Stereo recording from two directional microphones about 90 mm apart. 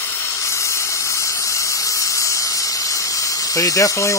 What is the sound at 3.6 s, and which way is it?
Speech, 35° left (ahead or behind).